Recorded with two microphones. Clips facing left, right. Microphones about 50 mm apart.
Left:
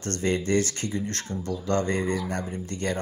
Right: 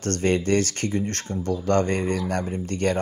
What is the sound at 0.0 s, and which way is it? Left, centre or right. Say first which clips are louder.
Speech: right 4 dB; right.